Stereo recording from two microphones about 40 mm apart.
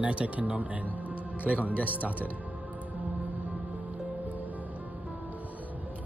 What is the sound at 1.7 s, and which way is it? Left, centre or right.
Speech, left.